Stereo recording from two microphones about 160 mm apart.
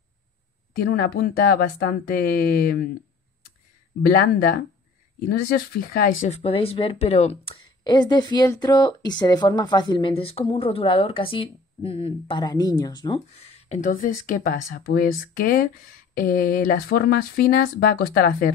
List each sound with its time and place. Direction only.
0.7 s speech: 65° left (ahead or behind)
4.1 s speech: 70° left (ahead or behind)
6.2 s speech: 40° left (ahead or behind)
7.8 s speech: 25° left (ahead or behind)
13.3 s a sound: 40° left (ahead or behind)
13.8 s speech: 55° left (ahead or behind)